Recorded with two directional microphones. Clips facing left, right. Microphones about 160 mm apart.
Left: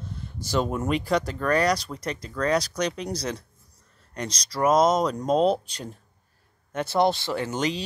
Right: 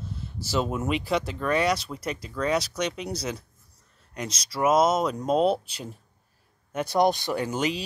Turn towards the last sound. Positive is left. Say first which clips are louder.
# even
turn(degrees=-10)  # may be behind; listen again after turning